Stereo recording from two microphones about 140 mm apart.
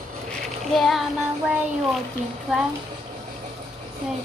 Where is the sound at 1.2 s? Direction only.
10° right (ahead or behind).